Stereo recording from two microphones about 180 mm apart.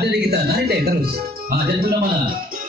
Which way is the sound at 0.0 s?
65° right (ahead or behind).